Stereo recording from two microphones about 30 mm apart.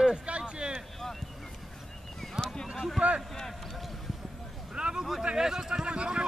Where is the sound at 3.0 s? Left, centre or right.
Right.